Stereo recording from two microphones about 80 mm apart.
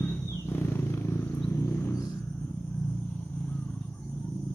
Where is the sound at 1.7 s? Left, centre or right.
Left.